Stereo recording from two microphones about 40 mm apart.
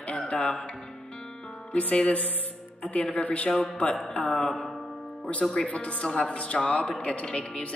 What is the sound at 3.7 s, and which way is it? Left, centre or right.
Speech, left.